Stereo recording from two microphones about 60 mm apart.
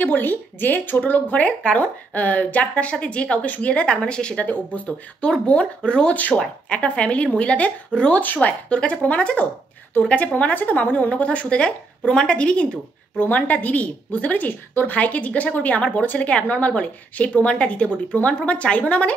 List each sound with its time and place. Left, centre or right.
0.0 s speech: left
4.5 s speech: left